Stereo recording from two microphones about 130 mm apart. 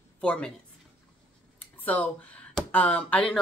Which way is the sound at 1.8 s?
10° left (ahead or behind).